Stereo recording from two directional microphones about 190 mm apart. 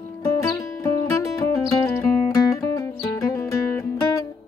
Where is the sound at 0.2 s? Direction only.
15° left (ahead or behind).